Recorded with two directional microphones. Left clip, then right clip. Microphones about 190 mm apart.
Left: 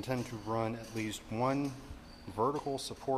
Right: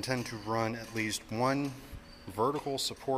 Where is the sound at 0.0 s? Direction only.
5° right (ahead or behind).